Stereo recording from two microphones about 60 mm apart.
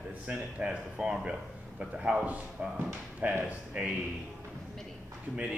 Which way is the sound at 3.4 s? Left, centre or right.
Centre.